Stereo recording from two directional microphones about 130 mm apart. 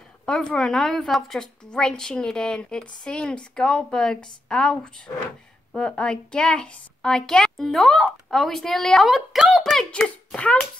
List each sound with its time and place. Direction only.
0.2 s a woman's voice: 5° left (ahead or behind)
5.8 s a woman's voice: 5° left (ahead or behind)